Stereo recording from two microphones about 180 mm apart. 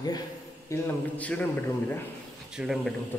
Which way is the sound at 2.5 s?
5° right (ahead or behind).